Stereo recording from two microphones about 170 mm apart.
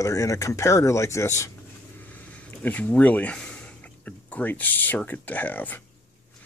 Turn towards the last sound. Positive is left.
turn(degrees=10)  # may be behind; listen again after turning